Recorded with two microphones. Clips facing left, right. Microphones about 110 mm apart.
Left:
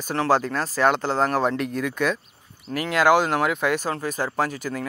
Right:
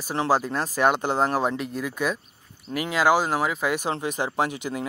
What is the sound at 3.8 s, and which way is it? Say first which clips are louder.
Speech: even; 20° right (ahead or behind).